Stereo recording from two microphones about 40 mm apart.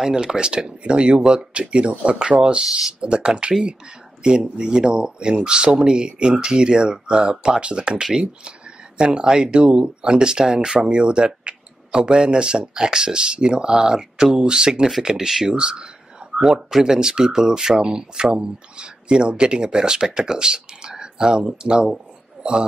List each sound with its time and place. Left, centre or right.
0.1 s speech: centre
15.5 s speech: right
16.3 s a man's voice: centre